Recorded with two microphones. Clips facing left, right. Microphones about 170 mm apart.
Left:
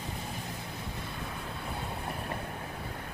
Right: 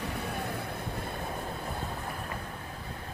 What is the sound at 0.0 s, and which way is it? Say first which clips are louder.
Vehicle: right 5 dB; 65° right (ahead or behind).